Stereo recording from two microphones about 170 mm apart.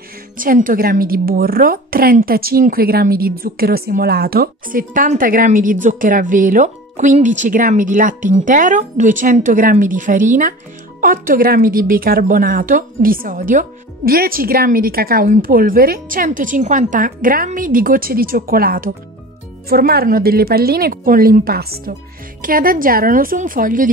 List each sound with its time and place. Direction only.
0.4 s a woman's voice: 55° right (ahead or behind)